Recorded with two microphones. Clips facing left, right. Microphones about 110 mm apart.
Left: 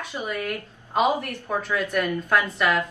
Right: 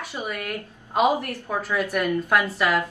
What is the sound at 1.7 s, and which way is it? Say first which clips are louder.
Speech: right 2 dB; 10° right (ahead or behind).